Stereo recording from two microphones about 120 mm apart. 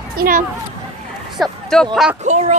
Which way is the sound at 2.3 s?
80° right.